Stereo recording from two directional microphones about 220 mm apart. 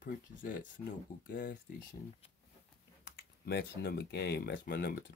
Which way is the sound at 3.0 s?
55° left (ahead or behind).